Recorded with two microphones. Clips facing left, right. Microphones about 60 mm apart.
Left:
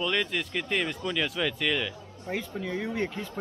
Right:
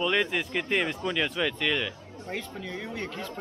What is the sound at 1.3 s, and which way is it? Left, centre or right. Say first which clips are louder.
Speech: right 1 dB; centre.